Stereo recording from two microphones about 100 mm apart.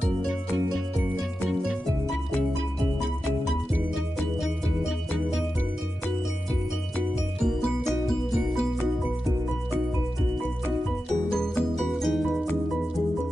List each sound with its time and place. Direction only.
11.9 s music: centre (ahead or behind)